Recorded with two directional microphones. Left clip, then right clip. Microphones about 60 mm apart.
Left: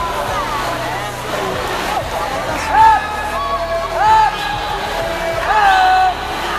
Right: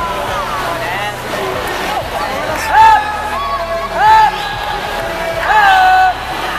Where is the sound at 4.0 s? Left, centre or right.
Right.